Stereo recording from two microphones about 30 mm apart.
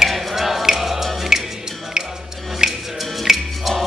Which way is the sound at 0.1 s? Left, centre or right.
Centre.